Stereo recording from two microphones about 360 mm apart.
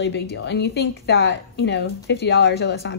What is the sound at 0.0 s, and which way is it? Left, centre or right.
A woman's voice, left.